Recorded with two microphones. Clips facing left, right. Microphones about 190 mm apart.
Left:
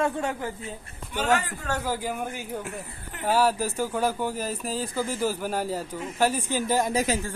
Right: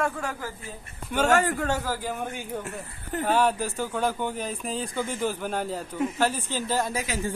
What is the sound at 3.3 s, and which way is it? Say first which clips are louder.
Speech: left 1 dB; 5° left (ahead or behind).